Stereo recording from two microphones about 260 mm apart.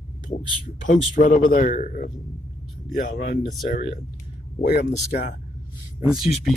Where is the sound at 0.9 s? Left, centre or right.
Left.